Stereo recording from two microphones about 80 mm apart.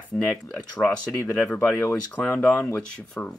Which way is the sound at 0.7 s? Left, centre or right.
Centre.